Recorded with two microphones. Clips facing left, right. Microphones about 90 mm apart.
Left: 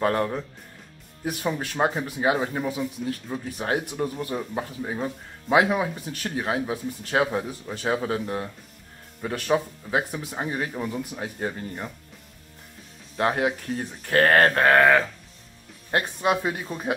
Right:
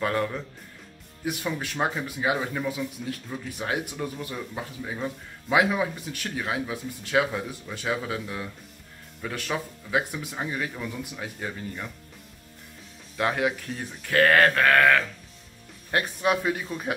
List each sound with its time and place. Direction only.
0.0 s speech: 40° left (ahead or behind)
13.2 s speech: 35° left (ahead or behind)